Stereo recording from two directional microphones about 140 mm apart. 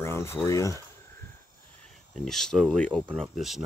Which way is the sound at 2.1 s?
5° left (ahead or behind).